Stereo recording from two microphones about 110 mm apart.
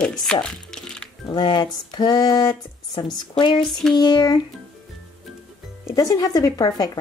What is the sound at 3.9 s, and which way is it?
Speech, 40° left (ahead or behind).